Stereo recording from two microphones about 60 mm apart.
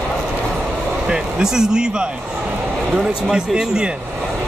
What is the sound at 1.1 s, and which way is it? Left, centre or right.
Speech, centre.